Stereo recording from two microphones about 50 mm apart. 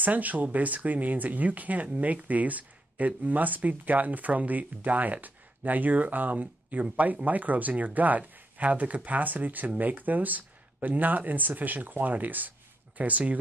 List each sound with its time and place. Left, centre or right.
0.0 s speech: right